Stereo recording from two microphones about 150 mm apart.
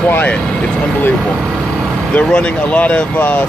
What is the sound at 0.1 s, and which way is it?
Speech, 10° left (ahead or behind).